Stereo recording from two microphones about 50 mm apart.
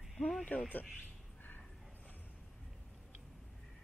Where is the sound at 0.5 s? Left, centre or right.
Left.